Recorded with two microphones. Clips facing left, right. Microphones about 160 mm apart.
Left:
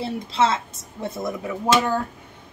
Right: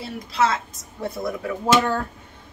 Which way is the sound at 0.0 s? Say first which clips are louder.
Left 1 dB; 25° left (ahead or behind).